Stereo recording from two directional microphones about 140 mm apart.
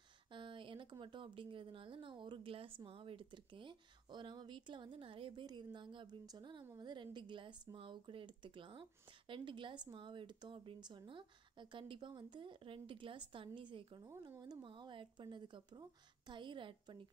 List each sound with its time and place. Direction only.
0.3 s a woman's voice: 35° right (ahead or behind)